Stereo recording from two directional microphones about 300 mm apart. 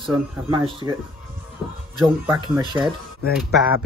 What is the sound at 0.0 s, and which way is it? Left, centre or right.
Speech, centre.